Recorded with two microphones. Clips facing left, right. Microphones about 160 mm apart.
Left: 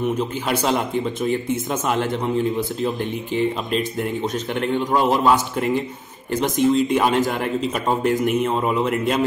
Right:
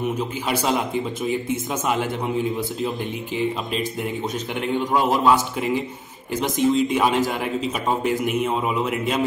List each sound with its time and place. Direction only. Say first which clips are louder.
0.5 s speech: left 1 dB; centre (ahead or behind)
3.3 s speech: left 3 dB; 5° right (ahead or behind)